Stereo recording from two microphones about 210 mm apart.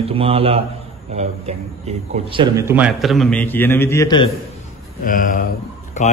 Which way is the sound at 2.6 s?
10° right (ahead or behind).